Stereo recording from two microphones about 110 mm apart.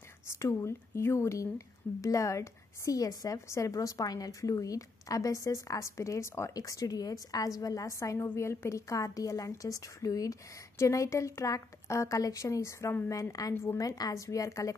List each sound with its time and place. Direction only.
0.3 s a woman's voice: 30° left (ahead or behind)